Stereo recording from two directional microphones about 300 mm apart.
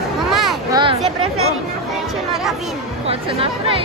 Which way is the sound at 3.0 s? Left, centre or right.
Centre.